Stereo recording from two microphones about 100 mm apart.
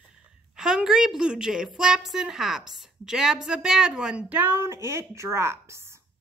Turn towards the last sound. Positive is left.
turn(degrees=-25)  # may be behind; listen again after turning